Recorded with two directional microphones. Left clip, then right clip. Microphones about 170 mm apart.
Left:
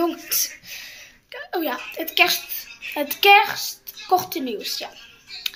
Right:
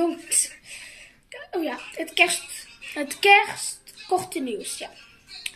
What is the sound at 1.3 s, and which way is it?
Speech, 10° right (ahead or behind).